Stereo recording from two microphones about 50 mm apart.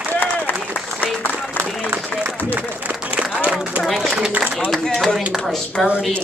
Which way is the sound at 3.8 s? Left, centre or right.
Centre.